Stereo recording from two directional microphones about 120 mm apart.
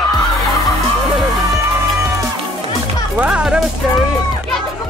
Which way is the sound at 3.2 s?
10° right (ahead or behind).